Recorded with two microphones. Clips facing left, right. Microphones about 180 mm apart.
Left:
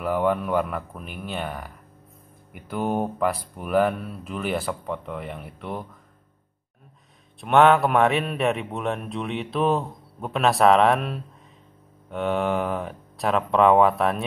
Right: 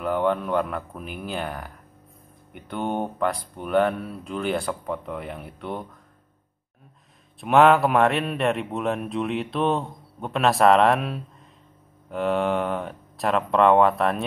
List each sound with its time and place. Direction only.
0.0 s a man's voice: 5° left (ahead or behind)
7.3 s a man's voice: centre (ahead or behind)